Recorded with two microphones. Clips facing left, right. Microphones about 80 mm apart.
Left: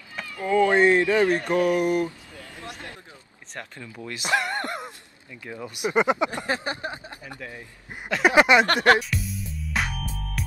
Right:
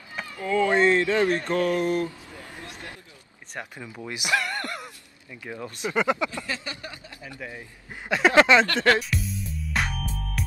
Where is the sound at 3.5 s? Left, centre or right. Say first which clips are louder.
Right 1 dB; centre.